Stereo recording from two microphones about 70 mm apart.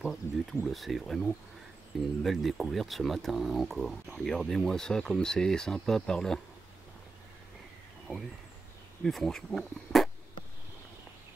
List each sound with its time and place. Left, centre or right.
0.0 s speech: centre
8.1 s speech: centre
9.0 s speech: centre